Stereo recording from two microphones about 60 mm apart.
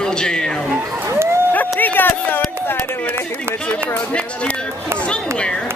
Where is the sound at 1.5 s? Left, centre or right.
Left.